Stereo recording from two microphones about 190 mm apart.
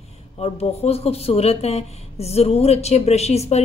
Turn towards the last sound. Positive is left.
turn(degrees=35)  # may be behind; listen again after turning